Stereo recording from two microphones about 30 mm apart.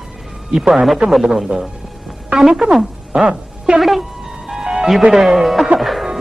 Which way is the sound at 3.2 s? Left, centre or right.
Right.